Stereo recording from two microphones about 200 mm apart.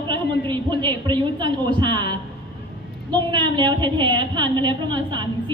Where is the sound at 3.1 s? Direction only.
20° right (ahead or behind).